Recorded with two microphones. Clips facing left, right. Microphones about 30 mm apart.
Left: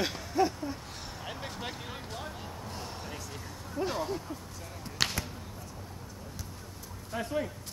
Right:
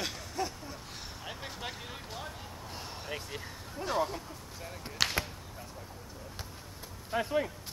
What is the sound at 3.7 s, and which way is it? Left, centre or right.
Speech, centre.